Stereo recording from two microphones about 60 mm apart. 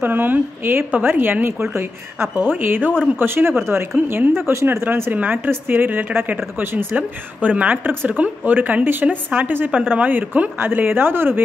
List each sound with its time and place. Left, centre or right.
0.0 s speech: right
5.1 s speech: right